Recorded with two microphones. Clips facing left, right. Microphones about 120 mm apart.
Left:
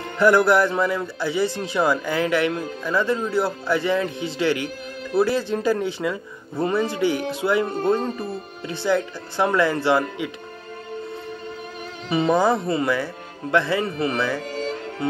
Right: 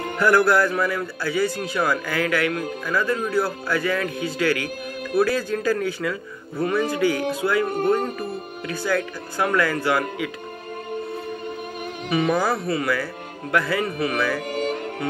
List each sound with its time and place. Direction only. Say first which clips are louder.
0.2 s speech: left 2 dB; 25° left (ahead or behind)
12.1 s speech: left 3 dB; 25° left (ahead or behind)
14.5 s music: right 3 dB; 55° right (ahead or behind)